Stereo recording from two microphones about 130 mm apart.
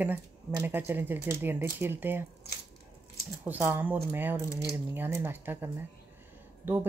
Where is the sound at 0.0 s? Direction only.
15° right (ahead or behind).